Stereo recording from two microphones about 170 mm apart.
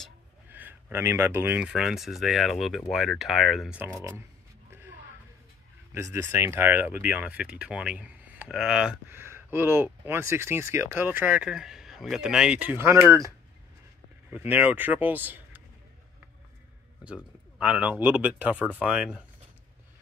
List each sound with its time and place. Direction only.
0.5 s speech: 10° right (ahead or behind)
4.6 s a sound: 15° right (ahead or behind)
5.9 s speech: 15° right (ahead or behind)
14.3 s speech: 10° right (ahead or behind)
17.0 s speech: 5° right (ahead or behind)